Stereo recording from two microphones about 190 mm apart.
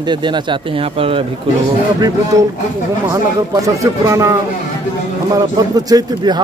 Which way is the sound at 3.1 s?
15° right (ahead or behind).